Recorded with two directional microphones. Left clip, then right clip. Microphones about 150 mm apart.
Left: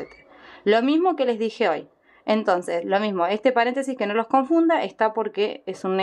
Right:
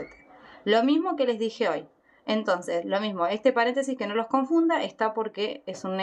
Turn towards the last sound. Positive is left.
turn(degrees=35)  # may be behind; listen again after turning